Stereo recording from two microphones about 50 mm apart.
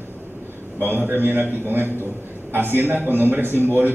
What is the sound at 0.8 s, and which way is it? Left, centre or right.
A man's voice, right.